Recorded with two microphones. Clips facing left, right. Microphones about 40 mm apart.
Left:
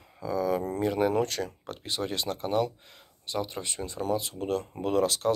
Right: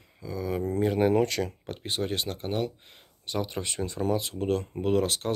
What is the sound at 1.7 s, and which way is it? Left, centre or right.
Speech, right.